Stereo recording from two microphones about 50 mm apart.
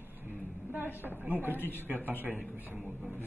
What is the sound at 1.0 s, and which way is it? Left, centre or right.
Speech, right.